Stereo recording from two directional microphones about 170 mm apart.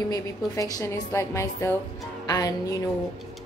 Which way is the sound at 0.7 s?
15° left (ahead or behind).